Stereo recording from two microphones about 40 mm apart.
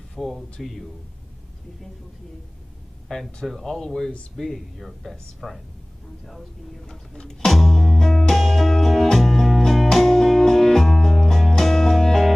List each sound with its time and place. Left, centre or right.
0.1 s speech: centre
3.1 s speech: centre
4.7 s speech: centre
7.2 s speech: centre
7.7 s music: centre